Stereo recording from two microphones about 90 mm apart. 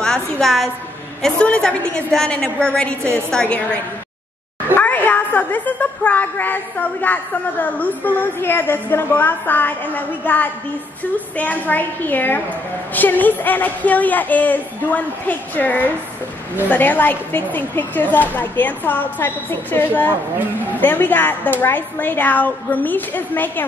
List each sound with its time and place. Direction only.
0.0 s a woman's voice: 5° left (ahead or behind)